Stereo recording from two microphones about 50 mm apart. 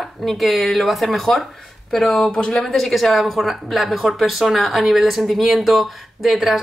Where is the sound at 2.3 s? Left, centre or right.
Centre.